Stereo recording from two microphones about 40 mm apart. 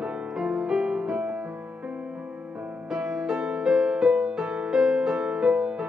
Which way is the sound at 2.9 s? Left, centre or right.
Centre.